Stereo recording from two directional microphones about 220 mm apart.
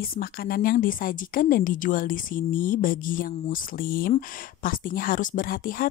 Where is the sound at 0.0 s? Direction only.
40° left (ahead or behind).